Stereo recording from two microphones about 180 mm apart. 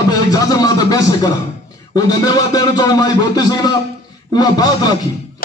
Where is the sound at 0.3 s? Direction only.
20° left (ahead or behind).